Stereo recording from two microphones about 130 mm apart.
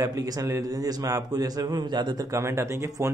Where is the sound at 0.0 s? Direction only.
30° right (ahead or behind).